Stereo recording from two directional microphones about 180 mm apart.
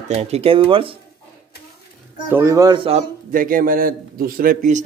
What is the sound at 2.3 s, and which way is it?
Speech, 15° right (ahead or behind).